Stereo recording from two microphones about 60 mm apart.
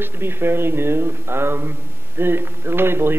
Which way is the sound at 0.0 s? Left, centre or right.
Right.